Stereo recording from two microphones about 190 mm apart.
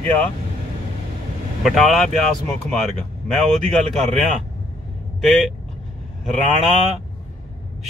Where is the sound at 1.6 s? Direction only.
Centre (ahead or behind).